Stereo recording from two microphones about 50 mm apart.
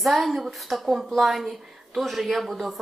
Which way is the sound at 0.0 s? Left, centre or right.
Centre.